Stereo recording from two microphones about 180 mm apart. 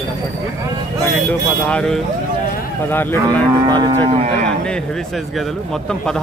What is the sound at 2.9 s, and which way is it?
Cattle, 10° left (ahead or behind).